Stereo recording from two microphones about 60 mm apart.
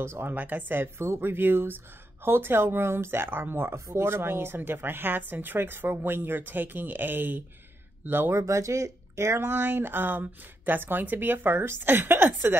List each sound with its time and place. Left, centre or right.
0.0 s speech: right
0.3 s speech: right
8.4 s speech: right